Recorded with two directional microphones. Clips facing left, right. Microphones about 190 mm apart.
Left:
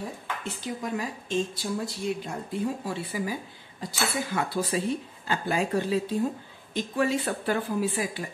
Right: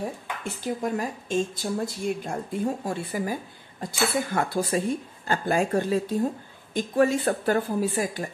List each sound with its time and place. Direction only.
0.4 s a woman's voice: 50° right (ahead or behind)